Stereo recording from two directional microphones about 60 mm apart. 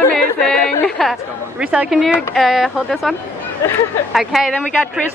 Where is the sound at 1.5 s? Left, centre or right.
Centre.